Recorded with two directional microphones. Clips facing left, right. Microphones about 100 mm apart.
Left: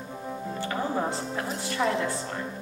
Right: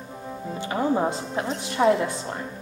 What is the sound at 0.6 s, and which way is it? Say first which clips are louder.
A woman's voice: right 6 dB; 15° right (ahead or behind).